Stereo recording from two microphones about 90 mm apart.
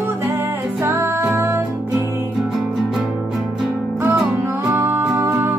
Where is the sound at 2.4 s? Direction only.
5° right (ahead or behind).